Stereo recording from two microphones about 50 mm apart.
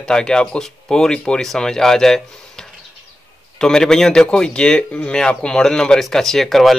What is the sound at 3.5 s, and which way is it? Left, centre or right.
Speech, centre.